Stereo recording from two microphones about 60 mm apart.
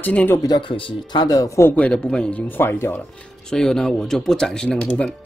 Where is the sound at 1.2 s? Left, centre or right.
Left.